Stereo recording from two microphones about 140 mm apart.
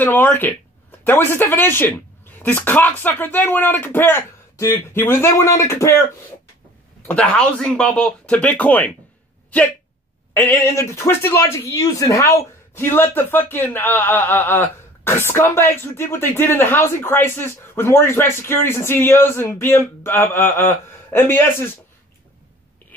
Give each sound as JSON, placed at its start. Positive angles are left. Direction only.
{"t": 0.0, "sound": "speech", "side_deg": 15}
{"t": 7.1, "sound": "speech", "side_deg": 10}
{"t": 10.3, "sound": "speech", "side_deg": 15}